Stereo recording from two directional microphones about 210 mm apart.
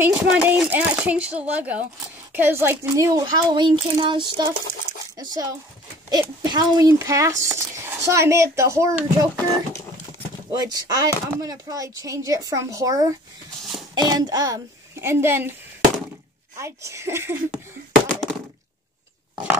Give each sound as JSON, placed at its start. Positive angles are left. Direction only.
{"t": 0.0, "sound": "speech", "side_deg": -10}
{"t": 10.5, "sound": "a child's voice", "side_deg": -20}
{"t": 16.5, "sound": "speech", "side_deg": -15}
{"t": 18.0, "sound": "a sound", "side_deg": 0}